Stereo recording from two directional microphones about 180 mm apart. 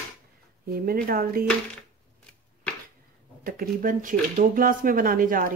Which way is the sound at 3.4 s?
55° right (ahead or behind).